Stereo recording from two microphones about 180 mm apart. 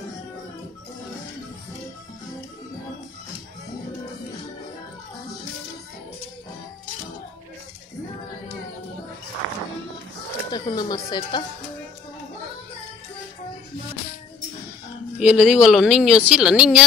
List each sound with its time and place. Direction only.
10.5 s speech: 25° left (ahead or behind)
15.1 s speech: 5° right (ahead or behind)